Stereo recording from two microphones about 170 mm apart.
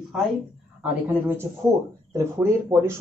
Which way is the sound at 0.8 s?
10° right (ahead or behind).